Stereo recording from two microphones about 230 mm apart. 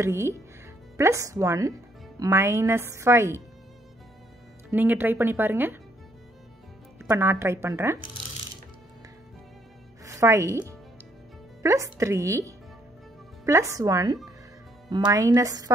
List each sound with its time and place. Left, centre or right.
0.0 s a woman's voice: centre
4.6 s a woman's voice: centre
7.0 s a woman's voice: centre
10.0 s a woman's voice: centre